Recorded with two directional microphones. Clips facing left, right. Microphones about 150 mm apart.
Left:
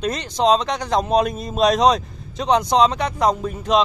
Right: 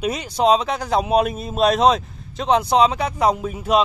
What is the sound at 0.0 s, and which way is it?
Speech, 5° right (ahead or behind).